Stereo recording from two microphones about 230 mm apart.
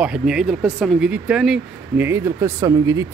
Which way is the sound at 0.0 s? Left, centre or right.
Centre.